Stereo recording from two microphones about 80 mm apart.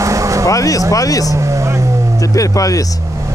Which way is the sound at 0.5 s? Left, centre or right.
Left.